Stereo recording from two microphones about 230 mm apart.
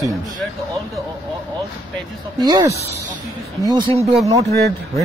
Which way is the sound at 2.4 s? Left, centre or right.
Centre.